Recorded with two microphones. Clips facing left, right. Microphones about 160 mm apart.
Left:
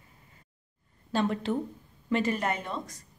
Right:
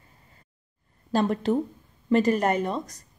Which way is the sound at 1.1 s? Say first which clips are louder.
Right 5 dB; 40° right (ahead or behind).